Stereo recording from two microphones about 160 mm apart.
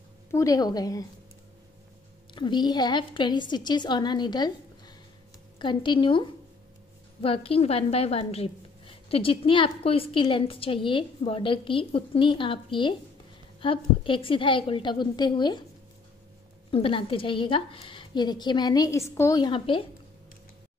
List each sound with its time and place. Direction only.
0.3 s a woman's voice: 20° left (ahead or behind)
2.3 s a woman's voice: 30° left (ahead or behind)
16.7 s a woman's voice: 35° left (ahead or behind)